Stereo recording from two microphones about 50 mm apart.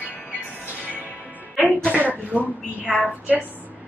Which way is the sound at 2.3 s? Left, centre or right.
Right.